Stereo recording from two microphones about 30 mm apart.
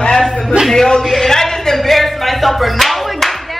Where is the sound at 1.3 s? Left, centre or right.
Centre.